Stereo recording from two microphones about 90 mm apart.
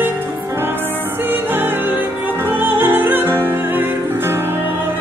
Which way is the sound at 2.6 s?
25° right (ahead or behind).